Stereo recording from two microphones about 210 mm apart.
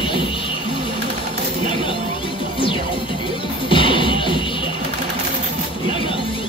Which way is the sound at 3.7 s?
25° left (ahead or behind).